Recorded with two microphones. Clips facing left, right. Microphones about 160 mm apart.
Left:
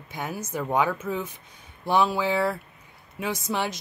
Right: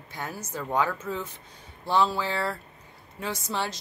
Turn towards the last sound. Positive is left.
turn(degrees=15)  # may be behind; listen again after turning